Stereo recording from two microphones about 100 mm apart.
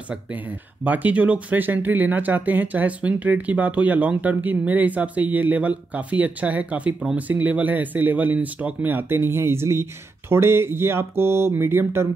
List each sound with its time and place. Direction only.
0.8 s speech: 15° right (ahead or behind)